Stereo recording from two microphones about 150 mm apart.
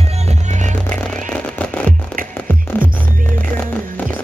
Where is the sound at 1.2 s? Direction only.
10° left (ahead or behind).